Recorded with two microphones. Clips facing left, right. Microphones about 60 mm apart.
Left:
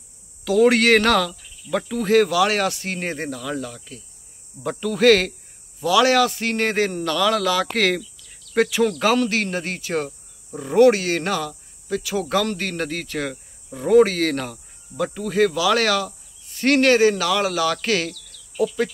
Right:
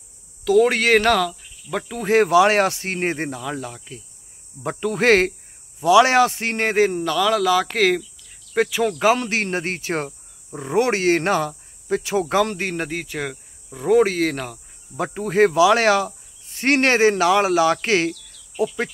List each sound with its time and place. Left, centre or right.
0.5 s speech: centre
1.3 s cricket: centre
2.0 s speech: right
6.7 s speech: centre
9.2 s speech: right
10.0 s cricket: right
15.1 s speech: right